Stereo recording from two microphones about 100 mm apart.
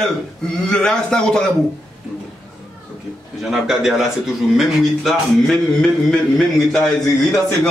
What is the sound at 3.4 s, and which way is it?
A man's voice, 5° right (ahead or behind).